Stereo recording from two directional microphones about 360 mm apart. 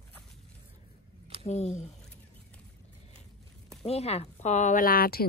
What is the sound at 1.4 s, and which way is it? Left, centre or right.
Speech, centre.